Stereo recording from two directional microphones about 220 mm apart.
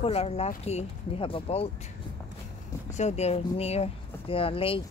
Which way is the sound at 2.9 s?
30° left (ahead or behind).